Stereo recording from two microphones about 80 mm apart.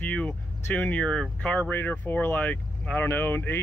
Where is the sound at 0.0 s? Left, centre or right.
Centre.